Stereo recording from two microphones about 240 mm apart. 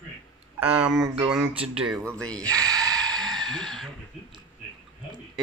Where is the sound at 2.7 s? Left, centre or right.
Centre.